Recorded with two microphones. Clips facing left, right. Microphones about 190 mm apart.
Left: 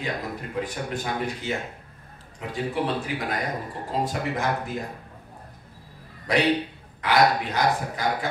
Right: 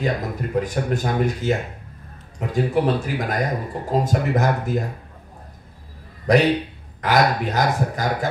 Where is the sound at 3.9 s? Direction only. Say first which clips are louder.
Right 6 dB; 45° right (ahead or behind).